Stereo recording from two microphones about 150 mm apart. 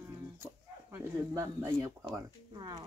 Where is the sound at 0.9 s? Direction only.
15° right (ahead or behind).